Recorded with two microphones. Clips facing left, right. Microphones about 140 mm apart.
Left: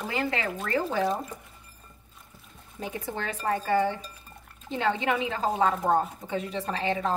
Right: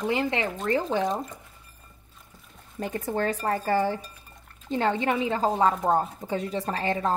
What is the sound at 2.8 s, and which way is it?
Speech, 45° right (ahead or behind).